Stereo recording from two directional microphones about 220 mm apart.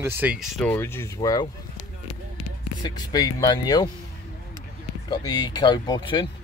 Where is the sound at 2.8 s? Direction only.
20° left (ahead or behind).